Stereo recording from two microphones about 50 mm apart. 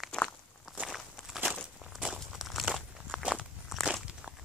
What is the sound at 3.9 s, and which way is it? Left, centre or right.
Walk, centre.